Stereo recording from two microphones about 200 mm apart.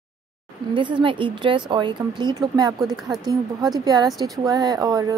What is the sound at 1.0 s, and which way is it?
Speech, 25° right (ahead or behind).